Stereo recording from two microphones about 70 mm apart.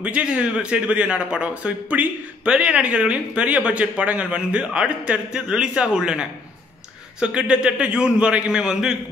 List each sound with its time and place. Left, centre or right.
0.0 s a man's voice: centre